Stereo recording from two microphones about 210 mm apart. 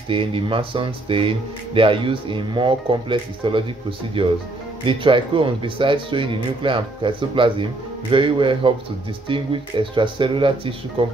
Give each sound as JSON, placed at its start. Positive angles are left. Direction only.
{"t": 0.1, "sound": "speech", "side_deg": -25}